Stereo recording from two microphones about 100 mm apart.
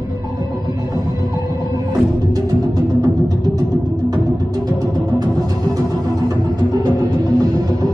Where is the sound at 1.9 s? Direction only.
40° right (ahead or behind).